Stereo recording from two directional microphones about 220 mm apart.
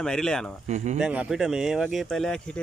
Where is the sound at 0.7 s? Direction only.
30° right (ahead or behind).